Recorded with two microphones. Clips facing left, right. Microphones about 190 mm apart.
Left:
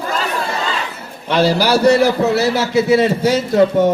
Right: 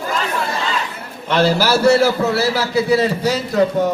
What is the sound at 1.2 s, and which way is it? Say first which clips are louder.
A man's voice: left 1 dB; 15° left (ahead or behind).